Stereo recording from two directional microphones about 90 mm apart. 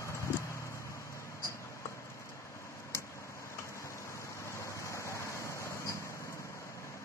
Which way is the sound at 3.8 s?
35° left (ahead or behind).